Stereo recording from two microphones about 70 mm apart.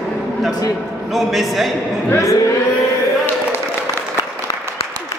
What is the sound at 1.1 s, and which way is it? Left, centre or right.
Speech, centre.